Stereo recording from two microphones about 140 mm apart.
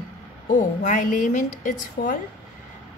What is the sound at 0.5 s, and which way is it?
A woman's voice, 65° left (ahead or behind).